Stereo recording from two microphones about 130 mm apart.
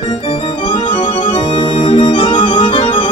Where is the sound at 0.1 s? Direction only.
45° left (ahead or behind).